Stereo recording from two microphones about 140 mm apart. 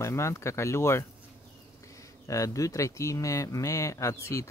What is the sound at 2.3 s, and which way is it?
Speech, 25° left (ahead or behind).